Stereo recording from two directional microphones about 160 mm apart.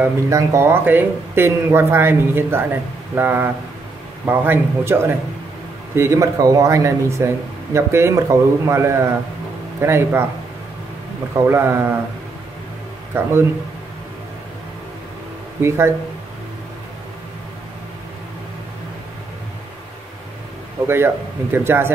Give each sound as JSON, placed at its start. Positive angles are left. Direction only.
{"t": 0.0, "sound": "speech", "side_deg": -20}
{"t": 11.3, "sound": "speech", "side_deg": -15}
{"t": 13.1, "sound": "speech", "side_deg": -15}
{"t": 20.8, "sound": "speech", "side_deg": -15}